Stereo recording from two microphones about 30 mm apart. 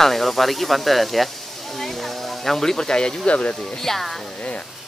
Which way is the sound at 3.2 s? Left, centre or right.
Left.